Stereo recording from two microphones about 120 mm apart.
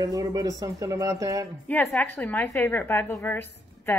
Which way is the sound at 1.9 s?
15° left (ahead or behind).